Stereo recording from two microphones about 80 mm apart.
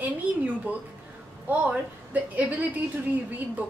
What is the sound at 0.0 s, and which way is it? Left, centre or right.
A woman's voice, centre.